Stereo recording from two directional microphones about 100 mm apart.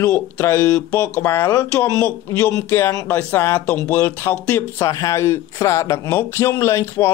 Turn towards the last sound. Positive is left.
turn(degrees=30)  # may be behind; listen again after turning